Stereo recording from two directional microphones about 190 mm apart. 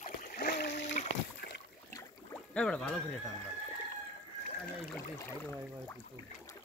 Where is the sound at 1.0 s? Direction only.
40° left (ahead or behind).